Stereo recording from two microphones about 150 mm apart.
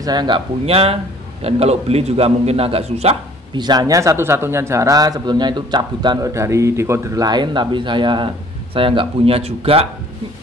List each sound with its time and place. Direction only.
0.0 s a man's voice: 30° right (ahead or behind)
3.5 s a man's voice: 30° right (ahead or behind)